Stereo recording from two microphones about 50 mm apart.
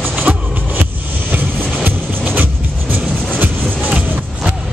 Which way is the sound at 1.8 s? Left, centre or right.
Right.